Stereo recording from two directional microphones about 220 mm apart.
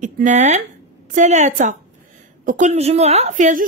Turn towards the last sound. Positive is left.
turn(degrees=-35)  # may be behind; listen again after turning